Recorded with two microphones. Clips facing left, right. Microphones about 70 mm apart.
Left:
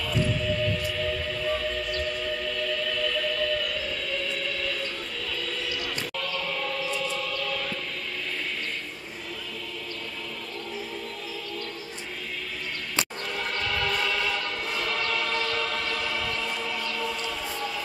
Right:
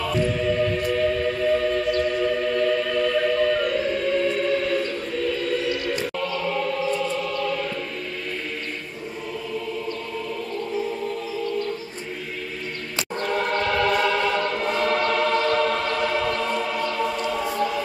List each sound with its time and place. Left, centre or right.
0.0 s music: right
13.3 s choir: right